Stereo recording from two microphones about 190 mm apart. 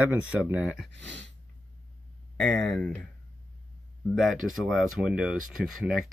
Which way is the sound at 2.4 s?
5° left (ahead or behind).